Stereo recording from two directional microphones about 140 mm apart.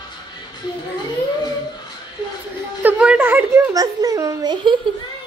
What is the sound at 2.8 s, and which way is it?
Speech, 10° right (ahead or behind).